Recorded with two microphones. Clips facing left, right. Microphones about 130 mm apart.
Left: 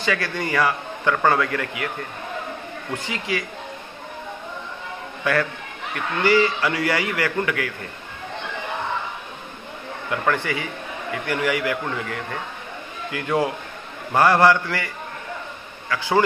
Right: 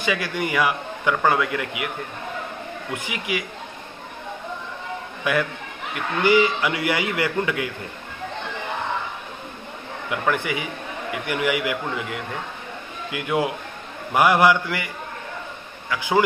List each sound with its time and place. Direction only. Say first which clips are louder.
0.0 s a man's voice: even; 15° right (ahead or behind)
2.9 s a man's voice: left 1 dB; 15° right (ahead or behind)
5.2 s a man's voice: left 1 dB; 15° right (ahead or behind)
10.0 s a man's voice: left 1 dB; 15° right (ahead or behind)
15.9 s a man's voice: even; 15° right (ahead or behind)